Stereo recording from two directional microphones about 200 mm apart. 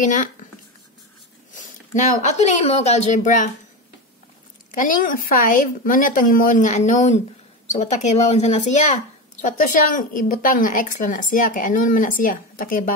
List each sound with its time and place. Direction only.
0.0 s speech: 40° left (ahead or behind)
1.5 s speech: 40° left (ahead or behind)
4.6 s speech: 40° left (ahead or behind)